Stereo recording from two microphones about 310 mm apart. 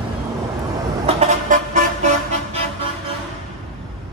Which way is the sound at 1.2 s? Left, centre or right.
Right.